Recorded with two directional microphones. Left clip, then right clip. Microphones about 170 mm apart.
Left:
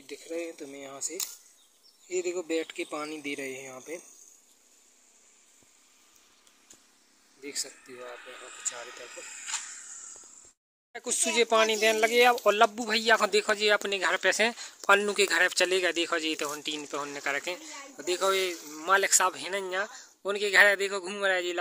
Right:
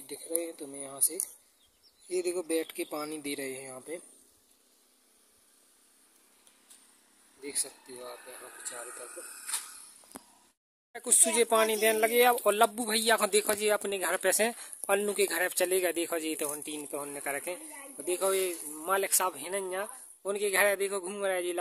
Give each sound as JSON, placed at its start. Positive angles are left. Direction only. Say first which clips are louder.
{"t": 0.0, "sound": "speech", "louder": "left 1 dB", "side_deg": -10}
{"t": 7.4, "sound": "speech", "louder": "left 2 dB", "side_deg": -5}
{"t": 9.1, "sound": "a sound", "louder": "left 6 dB", "side_deg": -65}
{"t": 10.9, "sound": "speech", "louder": "even", "side_deg": -10}